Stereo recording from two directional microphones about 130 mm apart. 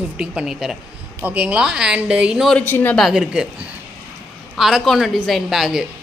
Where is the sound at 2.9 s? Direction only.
5° right (ahead or behind).